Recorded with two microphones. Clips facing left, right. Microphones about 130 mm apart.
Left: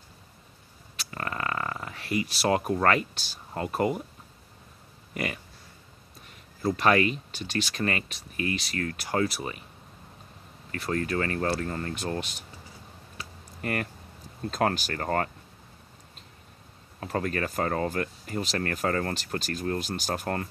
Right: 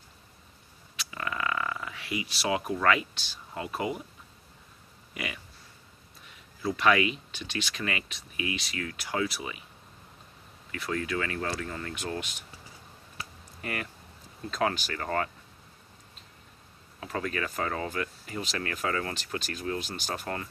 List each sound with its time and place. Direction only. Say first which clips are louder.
0.9 s speech: left 1 dB; 45° left (ahead or behind)
5.1 s a sound: left 5 dB; 45° left (ahead or behind)
6.6 s speech: left 2 dB; 40° left (ahead or behind)
10.7 s speech: left 3 dB; 40° left (ahead or behind)
13.6 s speech: left 5 dB; 45° left (ahead or behind)
17.0 s speech: left 3 dB; 45° left (ahead or behind)